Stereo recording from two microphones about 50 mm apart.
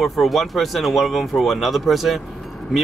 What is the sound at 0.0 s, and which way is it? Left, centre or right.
Speech, centre.